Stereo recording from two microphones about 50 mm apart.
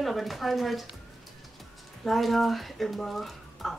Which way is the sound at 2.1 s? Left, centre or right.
Centre.